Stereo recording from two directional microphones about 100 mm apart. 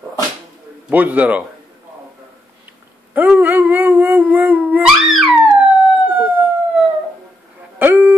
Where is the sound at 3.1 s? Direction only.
15° right (ahead or behind).